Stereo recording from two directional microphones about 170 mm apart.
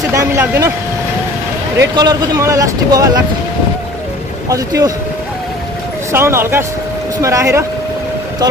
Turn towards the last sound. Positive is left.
turn(degrees=-15)  # may be behind; listen again after turning